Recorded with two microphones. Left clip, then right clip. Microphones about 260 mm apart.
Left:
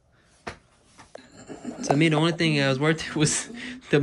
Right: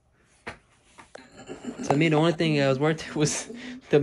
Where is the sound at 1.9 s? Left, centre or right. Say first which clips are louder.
Right 1 dB; centre.